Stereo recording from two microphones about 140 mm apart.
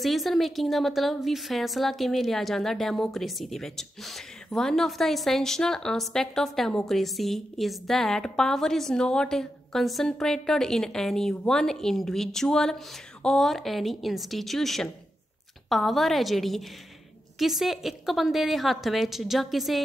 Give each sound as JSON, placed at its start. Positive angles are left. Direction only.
{"t": 0.0, "sound": "a woman's voice", "side_deg": 0}